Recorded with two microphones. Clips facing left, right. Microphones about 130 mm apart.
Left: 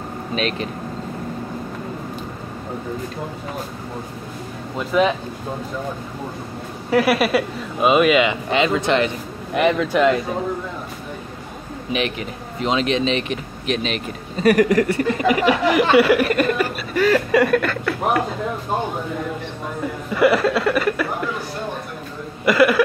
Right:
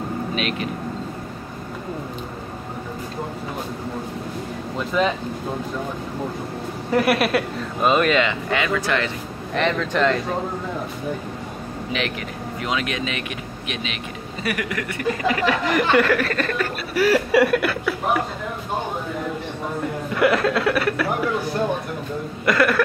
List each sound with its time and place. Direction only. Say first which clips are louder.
0.4 s speech: left 5 dB; 35° left (ahead or behind)
4.7 s speech: left 3 dB; 5° left (ahead or behind)
6.9 s speech: left 2 dB; centre (ahead or behind); by 9.1 s 20° left (ahead or behind)
9.5 s speech: left 4 dB; 10° left (ahead or behind)
11.9 s speech: left 4 dB; 20° left (ahead or behind); by 15.0 s 35° left (ahead or behind)
15.1 s speech: left 3 dB; 15° left (ahead or behind)
16.9 s speech: even; 5° right (ahead or behind)
20.1 s speech: left 3 dB; centre (ahead or behind)
22.4 s speech: left 4 dB; 5° left (ahead or behind)